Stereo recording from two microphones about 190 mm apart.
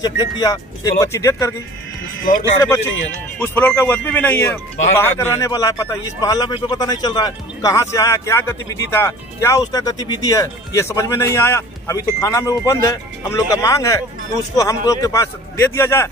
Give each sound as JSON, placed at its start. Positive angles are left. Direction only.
{"t": 0.0, "sound": "a man's voice", "side_deg": 20}
{"t": 2.6, "sound": "a man's voice", "side_deg": 15}